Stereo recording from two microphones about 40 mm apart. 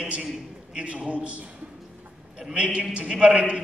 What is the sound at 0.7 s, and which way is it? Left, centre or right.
Speech, right.